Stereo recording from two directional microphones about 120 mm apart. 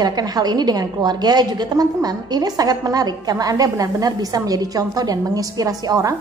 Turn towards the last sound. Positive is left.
turn(degrees=-30)  # may be behind; listen again after turning